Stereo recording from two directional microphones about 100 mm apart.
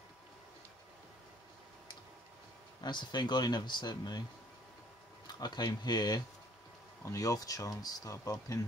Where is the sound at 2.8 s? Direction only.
45° left (ahead or behind).